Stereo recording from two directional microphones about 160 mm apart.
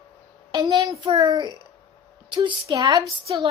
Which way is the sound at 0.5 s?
20° right (ahead or behind).